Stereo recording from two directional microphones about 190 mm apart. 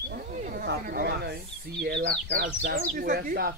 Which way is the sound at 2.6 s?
45° right (ahead or behind).